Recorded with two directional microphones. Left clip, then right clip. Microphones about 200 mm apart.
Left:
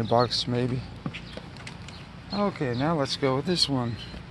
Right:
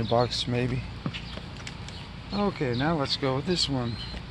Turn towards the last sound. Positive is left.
turn(degrees=45)  # may be behind; listen again after turning